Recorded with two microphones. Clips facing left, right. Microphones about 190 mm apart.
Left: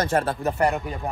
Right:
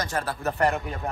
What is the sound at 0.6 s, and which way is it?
Speech, centre (ahead or behind).